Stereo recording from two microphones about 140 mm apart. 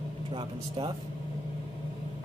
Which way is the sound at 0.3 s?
40° right (ahead or behind).